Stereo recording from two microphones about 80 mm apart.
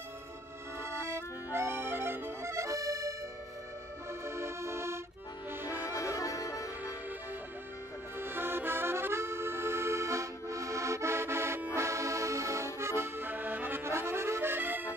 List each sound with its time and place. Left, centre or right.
0.8 s accordion: right
4.2 s accordion: right
5.5 s music: right
5.9 s music: left
8.2 s accordion: right